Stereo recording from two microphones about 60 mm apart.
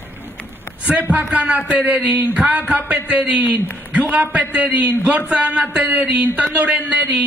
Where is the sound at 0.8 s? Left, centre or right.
Right.